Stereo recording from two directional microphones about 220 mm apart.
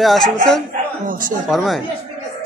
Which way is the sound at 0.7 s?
40° right (ahead or behind).